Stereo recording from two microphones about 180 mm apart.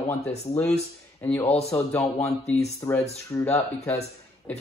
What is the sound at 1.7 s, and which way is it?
Speech, 10° left (ahead or behind).